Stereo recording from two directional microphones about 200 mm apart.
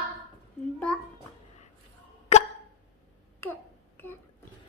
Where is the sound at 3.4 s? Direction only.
10° left (ahead or behind).